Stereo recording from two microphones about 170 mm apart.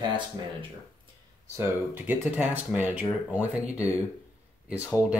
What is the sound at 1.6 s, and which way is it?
Speech, 10° right (ahead or behind).